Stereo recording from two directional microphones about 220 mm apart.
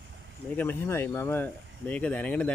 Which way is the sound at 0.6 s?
10° left (ahead or behind).